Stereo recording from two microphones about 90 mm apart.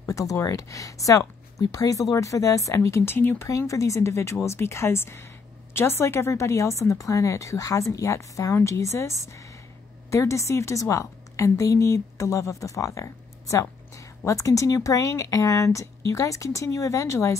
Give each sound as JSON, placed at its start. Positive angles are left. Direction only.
{"t": 0.1, "sound": "a woman's voice", "side_deg": 40}
{"t": 3.4, "sound": "a woman's voice", "side_deg": 35}